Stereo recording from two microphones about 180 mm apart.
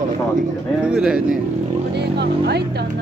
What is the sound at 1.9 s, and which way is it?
Speech, 65° right (ahead or behind).